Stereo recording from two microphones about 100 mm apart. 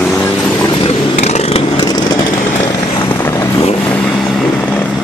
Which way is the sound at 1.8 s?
40° left (ahead or behind).